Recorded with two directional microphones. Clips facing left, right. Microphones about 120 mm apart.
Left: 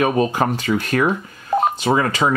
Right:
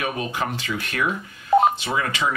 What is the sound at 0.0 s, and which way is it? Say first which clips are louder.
Speech: left 9 dB; 40° left (ahead or behind).